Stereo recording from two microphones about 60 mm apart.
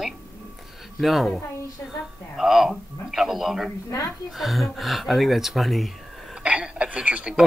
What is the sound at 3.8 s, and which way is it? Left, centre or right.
Speech, left.